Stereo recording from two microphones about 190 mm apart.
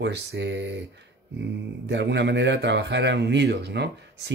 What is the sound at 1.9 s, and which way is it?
A man's voice, 65° right (ahead or behind).